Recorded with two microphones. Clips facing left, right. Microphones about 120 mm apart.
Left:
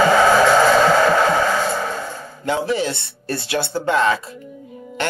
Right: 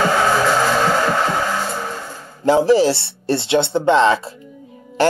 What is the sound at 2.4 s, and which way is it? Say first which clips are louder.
Speech: right 8 dB; 35° right (ahead or behind).